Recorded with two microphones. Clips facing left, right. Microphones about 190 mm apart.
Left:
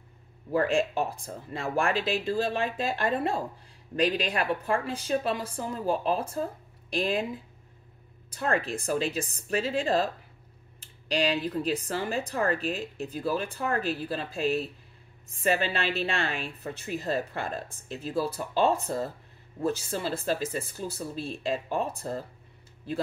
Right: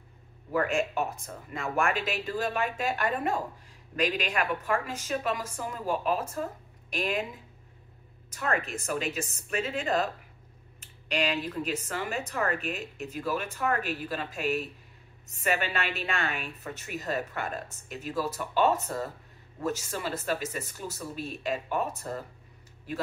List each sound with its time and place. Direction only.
0.5 s speech: 30° left (ahead or behind)
8.3 s speech: 30° left (ahead or behind)